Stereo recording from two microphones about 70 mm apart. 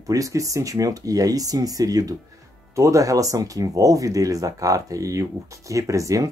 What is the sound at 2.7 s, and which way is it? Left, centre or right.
Speech, right.